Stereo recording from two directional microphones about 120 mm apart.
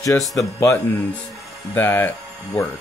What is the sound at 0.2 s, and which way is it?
Speech, centre (ahead or behind).